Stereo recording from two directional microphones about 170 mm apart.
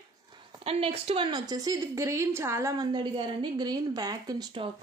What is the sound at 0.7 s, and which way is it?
A woman's voice, 35° right (ahead or behind).